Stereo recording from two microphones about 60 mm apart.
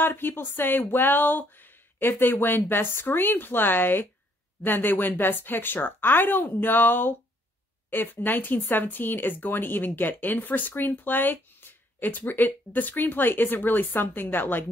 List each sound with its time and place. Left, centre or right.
0.0 s speech: left